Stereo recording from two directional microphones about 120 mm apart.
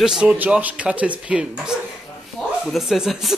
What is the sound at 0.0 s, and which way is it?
Speech, 5° right (ahead or behind).